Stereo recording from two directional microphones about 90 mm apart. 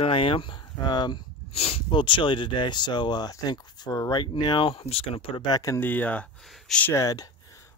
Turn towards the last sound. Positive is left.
turn(degrees=40)  # may be behind; listen again after turning